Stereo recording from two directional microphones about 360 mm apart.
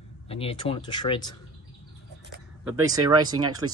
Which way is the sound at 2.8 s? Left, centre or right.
Centre.